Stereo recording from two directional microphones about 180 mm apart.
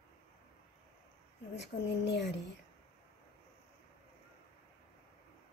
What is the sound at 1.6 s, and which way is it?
Speech, 75° left (ahead or behind).